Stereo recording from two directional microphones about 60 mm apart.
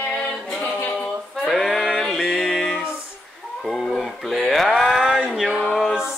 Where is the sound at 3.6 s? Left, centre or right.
Centre.